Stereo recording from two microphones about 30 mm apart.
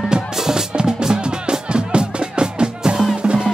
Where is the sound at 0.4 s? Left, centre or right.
Centre.